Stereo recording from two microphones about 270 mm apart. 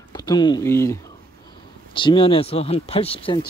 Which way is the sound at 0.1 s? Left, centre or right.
Centre.